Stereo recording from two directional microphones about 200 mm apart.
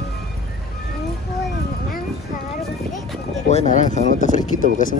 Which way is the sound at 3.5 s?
35° left (ahead or behind).